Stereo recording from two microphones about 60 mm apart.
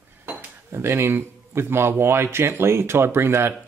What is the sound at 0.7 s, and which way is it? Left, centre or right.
A man's voice, right.